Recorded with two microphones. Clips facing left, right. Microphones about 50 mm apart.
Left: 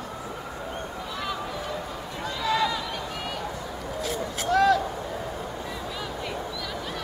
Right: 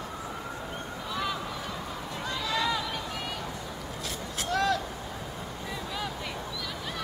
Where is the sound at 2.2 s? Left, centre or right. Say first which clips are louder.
Left 5 dB; centre.